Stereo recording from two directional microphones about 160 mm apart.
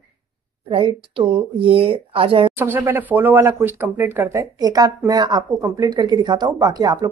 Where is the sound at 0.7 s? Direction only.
35° right (ahead or behind).